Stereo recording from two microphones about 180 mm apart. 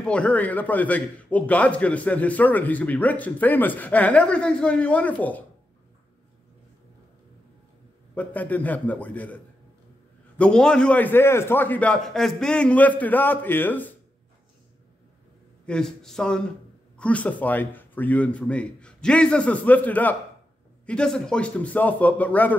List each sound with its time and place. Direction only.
0.0 s a man's voice: 5° left (ahead or behind)
8.1 s a man's voice: 10° left (ahead or behind)
15.6 s a man's voice: 5° left (ahead or behind)